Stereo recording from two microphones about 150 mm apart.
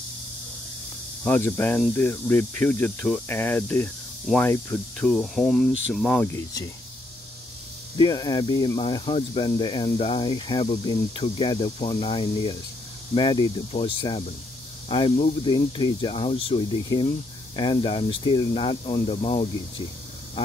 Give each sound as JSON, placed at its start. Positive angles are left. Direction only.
{"t": 1.2, "sound": "speech", "side_deg": 10}
{"t": 8.0, "sound": "speech", "side_deg": 30}